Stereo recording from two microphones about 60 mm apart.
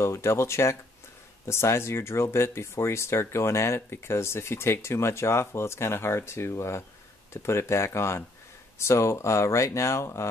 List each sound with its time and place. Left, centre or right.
0.0 s speech: left